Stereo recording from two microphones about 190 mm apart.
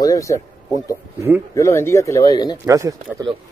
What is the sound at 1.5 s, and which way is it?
Speech, 15° left (ahead or behind).